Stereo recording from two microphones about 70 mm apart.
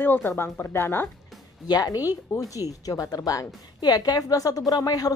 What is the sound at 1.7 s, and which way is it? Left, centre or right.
Speech, left.